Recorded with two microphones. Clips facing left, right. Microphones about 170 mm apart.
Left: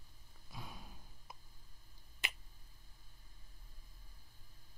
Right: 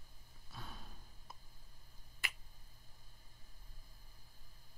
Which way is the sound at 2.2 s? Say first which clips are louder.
Left 2 dB; 20° left (ahead or behind).